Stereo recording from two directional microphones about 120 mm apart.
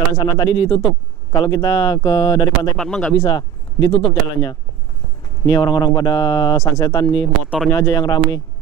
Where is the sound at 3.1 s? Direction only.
35° left (ahead or behind).